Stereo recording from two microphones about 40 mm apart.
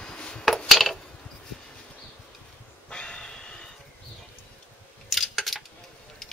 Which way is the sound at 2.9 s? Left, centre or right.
Left.